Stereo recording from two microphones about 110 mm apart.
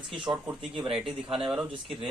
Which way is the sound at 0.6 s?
55° right (ahead or behind).